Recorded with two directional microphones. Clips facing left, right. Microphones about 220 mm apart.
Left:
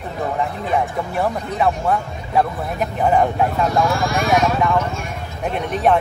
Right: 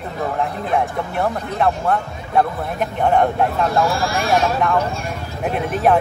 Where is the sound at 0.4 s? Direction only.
Centre (ahead or behind).